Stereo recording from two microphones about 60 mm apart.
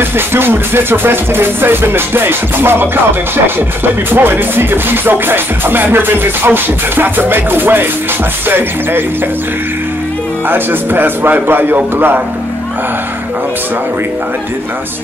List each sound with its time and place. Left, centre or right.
0.3 s music: right
10.5 s music: right